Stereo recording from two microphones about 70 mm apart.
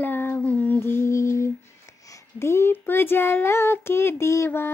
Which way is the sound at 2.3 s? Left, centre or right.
Left.